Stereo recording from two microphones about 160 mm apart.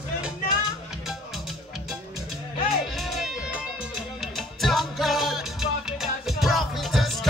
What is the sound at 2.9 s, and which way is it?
Music, centre (ahead or behind).